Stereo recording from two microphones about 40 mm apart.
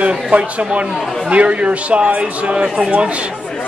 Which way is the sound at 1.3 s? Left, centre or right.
Right.